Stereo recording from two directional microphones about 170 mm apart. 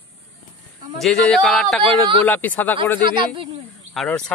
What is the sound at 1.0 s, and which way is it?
A man's voice, centre (ahead or behind).